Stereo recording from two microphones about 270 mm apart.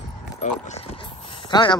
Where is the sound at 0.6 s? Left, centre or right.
Left.